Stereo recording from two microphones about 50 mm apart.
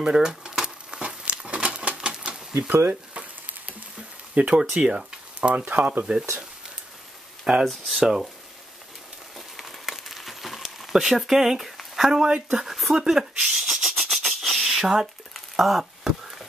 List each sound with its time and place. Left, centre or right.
0.0 s a sound: centre
2.7 s speech: right
4.4 s speech: right
4.7 s a sound: centre
5.5 s speech: right
7.6 s speech: centre
8.0 s speech: centre
9.6 s crumpling: centre
11.7 s speech: centre
12.9 s a sound: centre